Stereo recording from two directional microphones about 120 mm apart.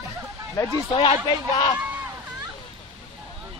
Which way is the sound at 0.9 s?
45° left (ahead or behind).